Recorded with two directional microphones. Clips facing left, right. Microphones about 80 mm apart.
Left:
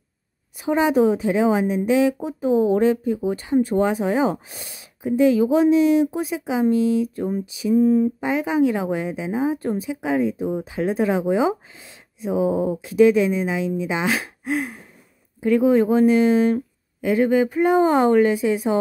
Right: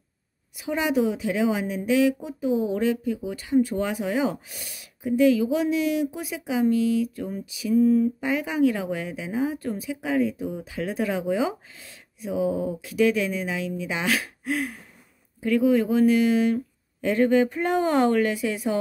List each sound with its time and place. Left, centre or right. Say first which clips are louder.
0.6 s a woman's voice: left 6 dB; left
2.1 s a woman's voice: left 5 dB; left
17.0 s speech: left 2 dB; centre